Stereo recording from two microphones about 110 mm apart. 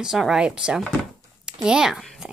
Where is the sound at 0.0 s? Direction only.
5° right (ahead or behind).